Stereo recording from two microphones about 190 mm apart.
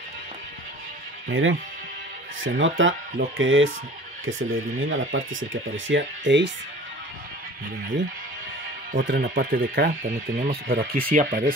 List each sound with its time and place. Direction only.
1.3 s speech: 90° right; by 6.5 s 70° right (ahead or behind)
9.0 s speech: 60° right (ahead or behind)